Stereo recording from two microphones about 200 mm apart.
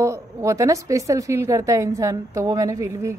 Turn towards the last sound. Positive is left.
turn(degrees=-15)  # may be behind; listen again after turning